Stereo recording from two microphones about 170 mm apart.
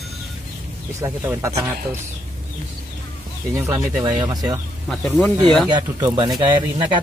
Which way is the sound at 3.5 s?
15° right (ahead or behind).